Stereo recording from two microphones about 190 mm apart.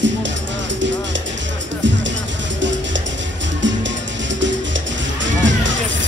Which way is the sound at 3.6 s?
75° right (ahead or behind).